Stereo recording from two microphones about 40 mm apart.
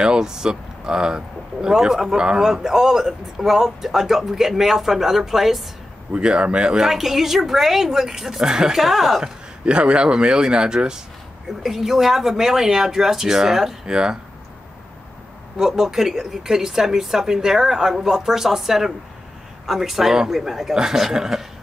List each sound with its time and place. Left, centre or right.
0.0 s speech: centre
6.1 s speech: right
6.9 s speech: centre
8.7 s speech: centre
9.2 s speech: right
11.4 s speech: centre
15.5 s speech: centre
20.7 s speech: centre